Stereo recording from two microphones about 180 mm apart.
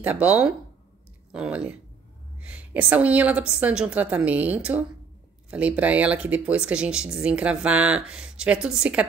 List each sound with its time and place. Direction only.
0.0 s speech: 5° right (ahead or behind)